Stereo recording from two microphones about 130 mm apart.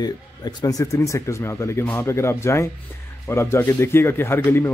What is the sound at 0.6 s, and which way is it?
A man's voice, 25° left (ahead or behind).